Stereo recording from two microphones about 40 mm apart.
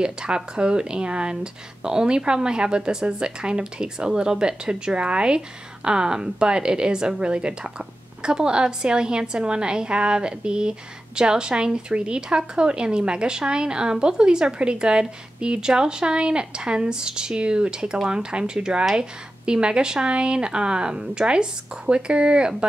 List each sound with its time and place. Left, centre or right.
0.0 s a woman's voice: right